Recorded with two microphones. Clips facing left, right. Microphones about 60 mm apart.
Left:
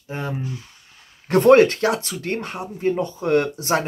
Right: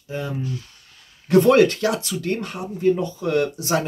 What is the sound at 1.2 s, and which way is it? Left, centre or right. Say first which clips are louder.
Speech: left 2 dB; left.